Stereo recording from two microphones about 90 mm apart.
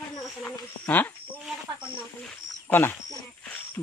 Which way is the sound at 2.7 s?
20° left (ahead or behind).